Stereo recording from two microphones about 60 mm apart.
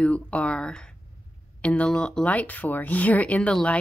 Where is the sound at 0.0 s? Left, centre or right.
Centre.